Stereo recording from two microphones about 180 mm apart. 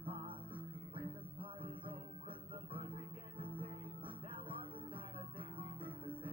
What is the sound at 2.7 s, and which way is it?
Music, 30° right (ahead or behind).